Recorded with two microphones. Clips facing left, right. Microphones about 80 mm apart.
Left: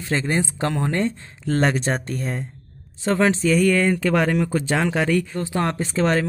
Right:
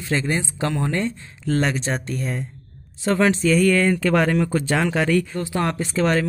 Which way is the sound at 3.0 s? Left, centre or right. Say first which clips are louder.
Even; centre.